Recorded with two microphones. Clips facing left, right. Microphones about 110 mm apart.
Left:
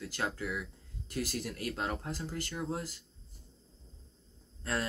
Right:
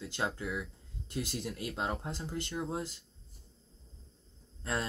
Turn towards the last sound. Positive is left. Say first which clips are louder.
# even
turn(degrees=-20)  # may be behind; listen again after turning